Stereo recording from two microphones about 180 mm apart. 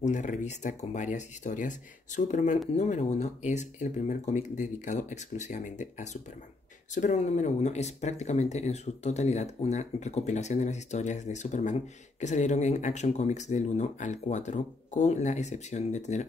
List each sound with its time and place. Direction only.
0.0 s speech: 40° left (ahead or behind)